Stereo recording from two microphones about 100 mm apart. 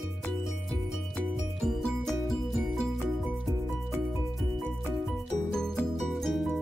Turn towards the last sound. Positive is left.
turn(degrees=0)  # may be behind; listen again after turning